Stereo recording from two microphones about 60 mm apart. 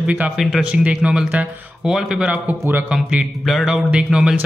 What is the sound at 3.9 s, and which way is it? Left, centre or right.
Speech, centre.